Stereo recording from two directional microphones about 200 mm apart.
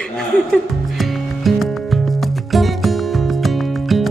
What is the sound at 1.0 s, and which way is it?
Music, centre (ahead or behind).